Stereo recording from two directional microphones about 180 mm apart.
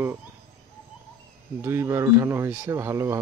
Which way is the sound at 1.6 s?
15° right (ahead or behind).